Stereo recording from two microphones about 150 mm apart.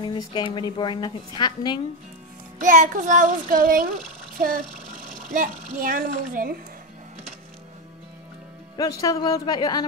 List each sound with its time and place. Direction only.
0.0 s a woman's voice: 30° left (ahead or behind)
2.6 s child singing: 60° right (ahead or behind)
4.4 s a child's voice: 65° right (ahead or behind)
8.7 s a woman's voice: 25° left (ahead or behind)